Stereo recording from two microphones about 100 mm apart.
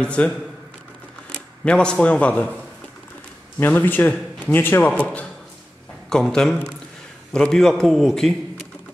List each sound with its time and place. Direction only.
0.0 s a man's voice: 10° left (ahead or behind)
1.3 s speech: 10° left (ahead or behind)
3.5 s a man's voice: 20° left (ahead or behind); by 8.6 s 5° left (ahead or behind)